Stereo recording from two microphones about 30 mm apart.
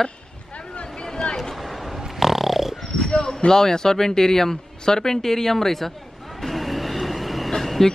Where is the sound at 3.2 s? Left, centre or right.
Left.